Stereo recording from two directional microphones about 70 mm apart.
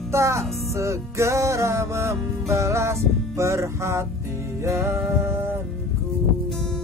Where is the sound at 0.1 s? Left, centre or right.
Right.